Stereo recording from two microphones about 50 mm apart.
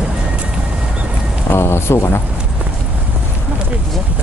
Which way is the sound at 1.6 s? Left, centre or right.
Left.